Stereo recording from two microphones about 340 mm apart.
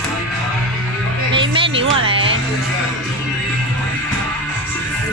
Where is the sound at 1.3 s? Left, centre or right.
Centre.